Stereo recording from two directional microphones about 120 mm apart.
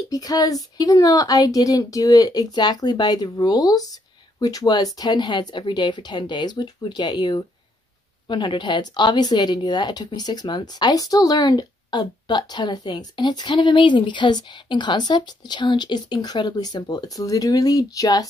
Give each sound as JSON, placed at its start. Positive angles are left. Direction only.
{"t": 0.1, "sound": "speech", "side_deg": 30}